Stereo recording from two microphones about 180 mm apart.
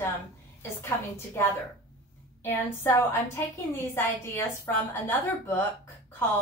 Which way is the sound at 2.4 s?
15° left (ahead or behind).